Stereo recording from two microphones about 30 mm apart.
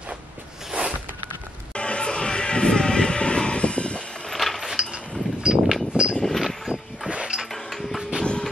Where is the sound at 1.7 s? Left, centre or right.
Left.